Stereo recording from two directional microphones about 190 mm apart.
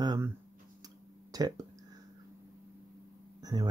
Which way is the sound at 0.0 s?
20° right (ahead or behind).